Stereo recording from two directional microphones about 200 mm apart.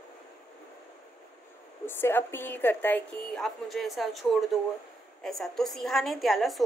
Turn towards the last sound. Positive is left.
turn(degrees=0)  # may be behind; listen again after turning